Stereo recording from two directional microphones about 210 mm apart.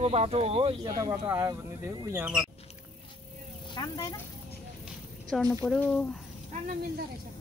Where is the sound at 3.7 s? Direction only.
20° left (ahead or behind).